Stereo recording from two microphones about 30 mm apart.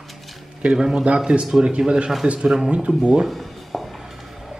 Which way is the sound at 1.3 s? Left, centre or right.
Right.